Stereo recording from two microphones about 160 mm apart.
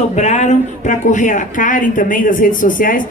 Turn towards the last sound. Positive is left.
turn(degrees=60)  # may be behind; listen again after turning